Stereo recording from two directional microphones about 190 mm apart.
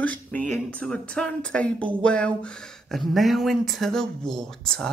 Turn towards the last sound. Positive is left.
turn(degrees=5)  # may be behind; listen again after turning